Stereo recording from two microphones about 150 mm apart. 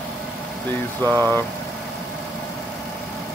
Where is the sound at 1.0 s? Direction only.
15° left (ahead or behind).